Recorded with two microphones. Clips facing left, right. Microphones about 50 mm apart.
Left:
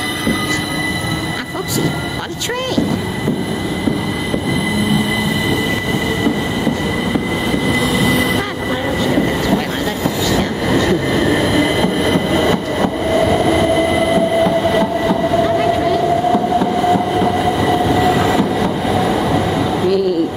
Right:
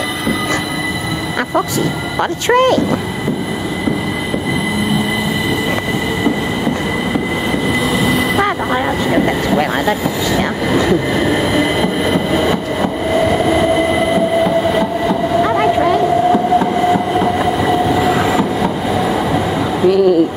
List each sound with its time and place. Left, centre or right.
2.4 s speech: right
8.0 s train: centre
9.1 s vehicle: centre
13.1 s train: centre
15.4 s vehicle: right
16.3 s train: centre